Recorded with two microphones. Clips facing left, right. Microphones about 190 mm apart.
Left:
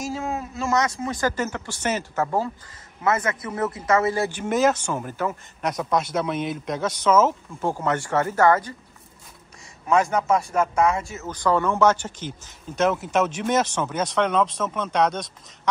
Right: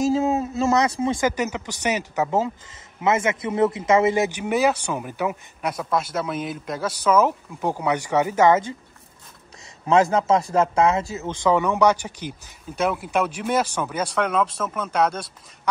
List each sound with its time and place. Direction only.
0.1 s a man's voice: 20° right (ahead or behind)
10.0 s speech: 25° right (ahead or behind); by 15.7 s 5° right (ahead or behind)